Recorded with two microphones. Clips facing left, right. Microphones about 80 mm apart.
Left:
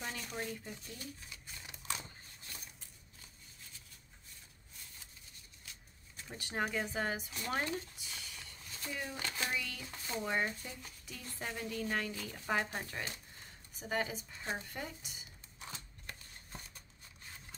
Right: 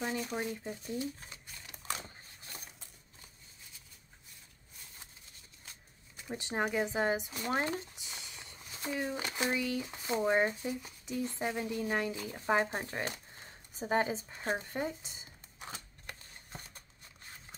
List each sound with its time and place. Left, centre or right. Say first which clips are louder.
0.0 s shuffling cards: right 6 dB; centre
0.7 s speech: right 10 dB; right
5.7 s a sound: right 1 dB; right
6.2 s speech: right 4 dB; right